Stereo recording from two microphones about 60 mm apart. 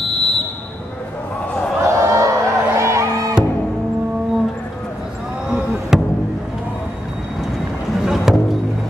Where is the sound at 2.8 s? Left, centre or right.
Right.